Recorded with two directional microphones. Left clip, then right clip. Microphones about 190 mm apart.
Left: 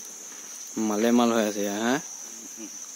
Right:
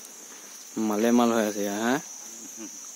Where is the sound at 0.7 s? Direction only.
5° left (ahead or behind).